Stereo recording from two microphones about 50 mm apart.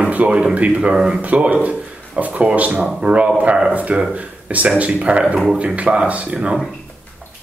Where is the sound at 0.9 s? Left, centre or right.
Centre.